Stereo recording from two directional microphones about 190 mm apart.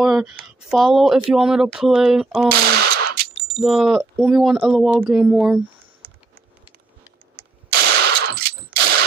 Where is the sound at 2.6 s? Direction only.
55° right (ahead or behind).